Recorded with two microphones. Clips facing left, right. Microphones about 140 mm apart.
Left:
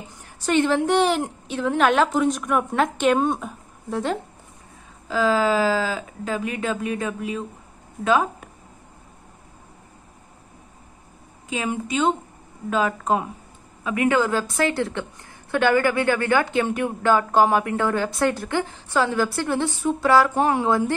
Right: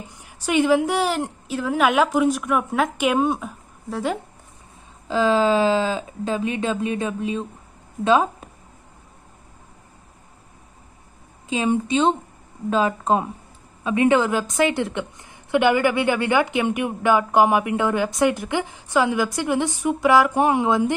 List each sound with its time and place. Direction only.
0.2 s a woman's voice: 10° right (ahead or behind)
5.0 s speech: 25° right (ahead or behind)
11.4 s a woman's voice: 25° right (ahead or behind)